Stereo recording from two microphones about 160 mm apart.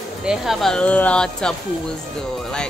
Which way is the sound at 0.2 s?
5° right (ahead or behind).